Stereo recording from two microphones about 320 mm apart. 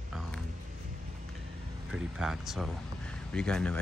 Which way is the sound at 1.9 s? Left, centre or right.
Centre.